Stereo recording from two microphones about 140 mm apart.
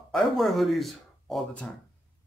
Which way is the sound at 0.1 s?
Centre (ahead or behind).